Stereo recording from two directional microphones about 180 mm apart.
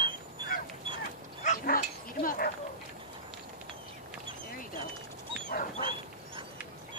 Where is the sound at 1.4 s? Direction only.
50° left (ahead or behind).